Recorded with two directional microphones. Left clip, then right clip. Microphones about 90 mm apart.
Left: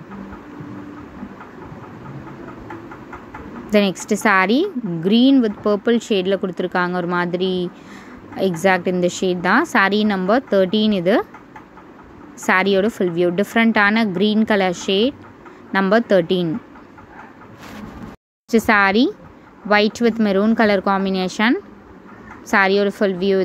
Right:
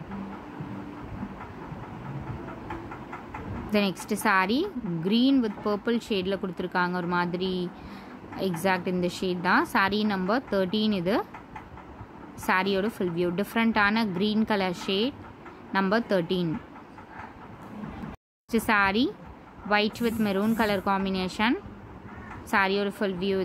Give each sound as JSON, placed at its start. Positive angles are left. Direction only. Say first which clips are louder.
{"t": 3.7, "sound": "speech", "louder": "left 10 dB", "side_deg": 25}
{"t": 12.4, "sound": "speech", "louder": "left 9 dB", "side_deg": 25}
{"t": 18.5, "sound": "speech", "louder": "left 9 dB", "side_deg": 30}